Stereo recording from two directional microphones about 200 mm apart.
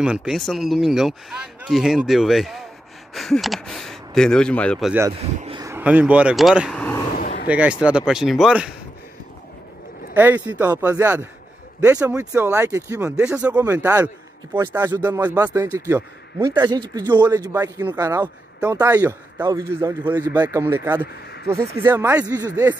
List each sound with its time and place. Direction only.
0.0 s speech: 5° right (ahead or behind)
5.6 s speech: 10° right (ahead or behind); by 7.0 s 5° left (ahead or behind)
7.2 s a sound: 45° left (ahead or behind)
7.4 s speech: 5° right (ahead or behind)
10.1 s a man's voice: 10° right (ahead or behind)